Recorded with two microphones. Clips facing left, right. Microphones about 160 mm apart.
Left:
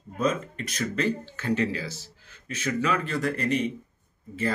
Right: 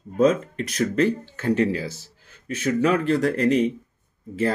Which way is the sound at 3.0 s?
85° right.